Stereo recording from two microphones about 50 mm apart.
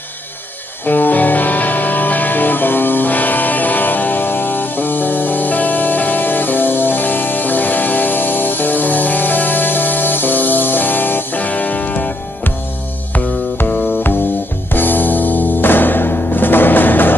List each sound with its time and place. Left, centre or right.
0.8 s music: left
14.7 s music: left